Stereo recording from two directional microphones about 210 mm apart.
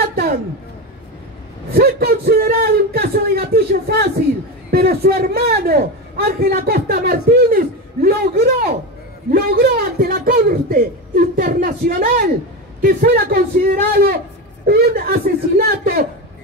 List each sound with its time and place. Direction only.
1.7 s a man's voice: 50° right (ahead or behind)